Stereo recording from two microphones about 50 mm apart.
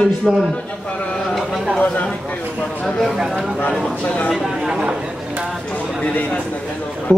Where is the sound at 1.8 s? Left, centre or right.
Left.